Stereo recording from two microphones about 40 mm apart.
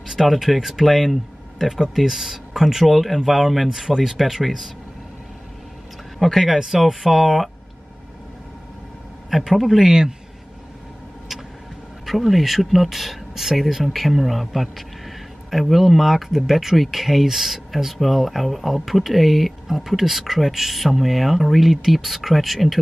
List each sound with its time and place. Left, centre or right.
0.1 s speech: centre
6.1 s speech: centre
9.3 s speech: centre
9.8 s speech: centre
12.1 s speech: centre